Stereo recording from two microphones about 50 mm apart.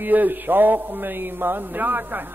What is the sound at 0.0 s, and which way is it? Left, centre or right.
A man's voice, right.